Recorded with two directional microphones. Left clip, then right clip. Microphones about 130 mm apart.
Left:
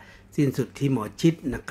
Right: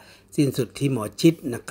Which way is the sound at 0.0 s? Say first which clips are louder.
Right 2 dB; 25° right (ahead or behind).